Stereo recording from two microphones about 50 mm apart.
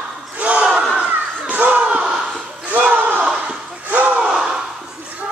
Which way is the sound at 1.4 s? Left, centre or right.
Right.